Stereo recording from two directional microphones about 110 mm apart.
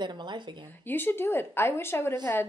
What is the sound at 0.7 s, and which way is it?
A woman's voice, 20° left (ahead or behind).